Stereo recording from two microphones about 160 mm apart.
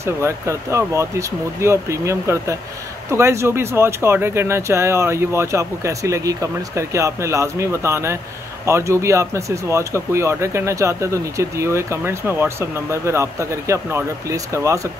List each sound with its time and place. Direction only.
0.0 s speech: 15° right (ahead or behind)